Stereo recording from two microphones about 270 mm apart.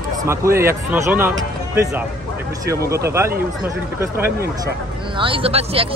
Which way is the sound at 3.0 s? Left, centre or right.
Centre.